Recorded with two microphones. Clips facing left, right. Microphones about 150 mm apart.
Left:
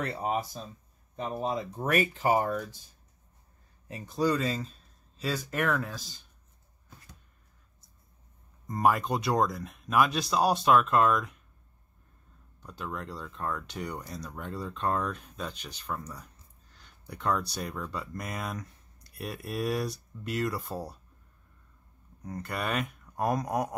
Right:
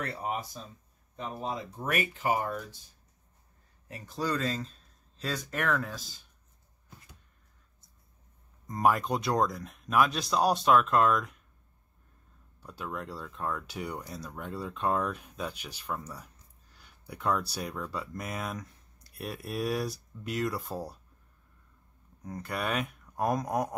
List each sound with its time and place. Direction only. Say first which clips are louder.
0.0 s speech: left 3 dB; 20° left (ahead or behind)
1.9 s speech: left 4 dB; 35° left (ahead or behind)
3.9 s speech: left 5 dB; 20° left (ahead or behind); by 6.2 s centre (ahead or behind)
8.6 s speech: left 1 dB; centre (ahead or behind)
12.5 s speech: even; 5° right (ahead or behind)
22.2 s speech: even; centre (ahead or behind)